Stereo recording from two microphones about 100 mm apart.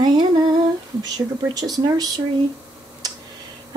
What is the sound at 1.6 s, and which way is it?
Speech, 40° right (ahead or behind).